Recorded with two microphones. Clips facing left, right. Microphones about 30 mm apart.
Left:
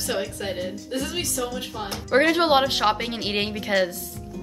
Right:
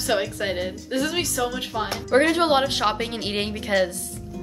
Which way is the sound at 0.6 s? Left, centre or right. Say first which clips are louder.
Right 2 dB; right.